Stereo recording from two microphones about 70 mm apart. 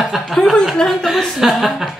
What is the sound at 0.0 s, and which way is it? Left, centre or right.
Speech, centre.